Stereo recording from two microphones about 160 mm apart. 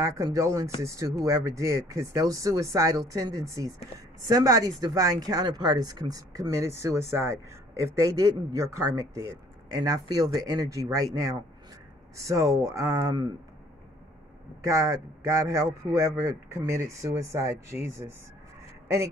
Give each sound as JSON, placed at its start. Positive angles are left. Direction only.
{"t": 0.0, "sound": "speech", "side_deg": -20}
{"t": 14.6, "sound": "speech", "side_deg": -20}